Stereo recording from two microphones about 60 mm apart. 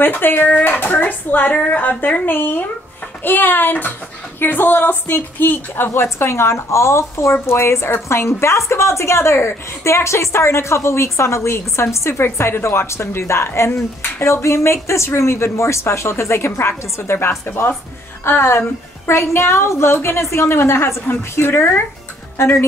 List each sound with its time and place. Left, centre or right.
0.0 s a woman's voice: left